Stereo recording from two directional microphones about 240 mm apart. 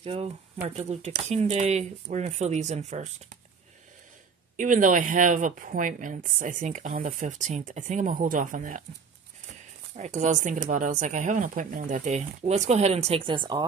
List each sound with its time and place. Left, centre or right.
0.0 s speech: right
4.6 s speech: right